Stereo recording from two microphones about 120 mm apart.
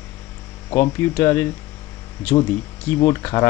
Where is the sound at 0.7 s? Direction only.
20° left (ahead or behind).